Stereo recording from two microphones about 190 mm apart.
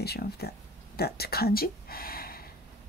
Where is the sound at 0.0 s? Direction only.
55° left (ahead or behind).